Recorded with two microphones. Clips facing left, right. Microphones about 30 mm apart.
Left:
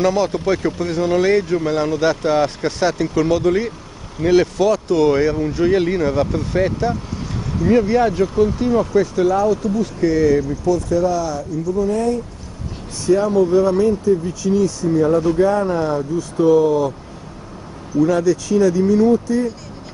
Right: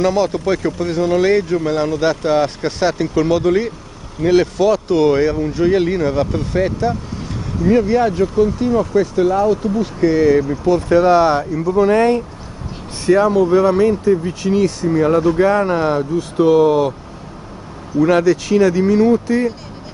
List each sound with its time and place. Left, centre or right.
0.0 s speech: centre
9.3 s speech: right
9.8 s speech: right
11.0 s speech: right
13.0 s speech: right
17.9 s speech: right